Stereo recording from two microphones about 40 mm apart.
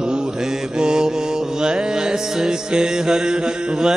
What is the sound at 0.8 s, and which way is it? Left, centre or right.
Mantra, centre.